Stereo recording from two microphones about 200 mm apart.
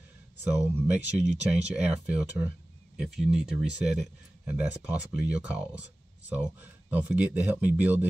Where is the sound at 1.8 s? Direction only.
5° right (ahead or behind).